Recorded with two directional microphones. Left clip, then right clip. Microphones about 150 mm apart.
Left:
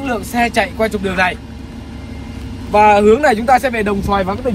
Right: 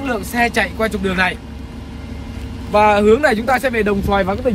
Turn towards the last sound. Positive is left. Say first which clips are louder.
# even
turn(degrees=45)  # may be behind; listen again after turning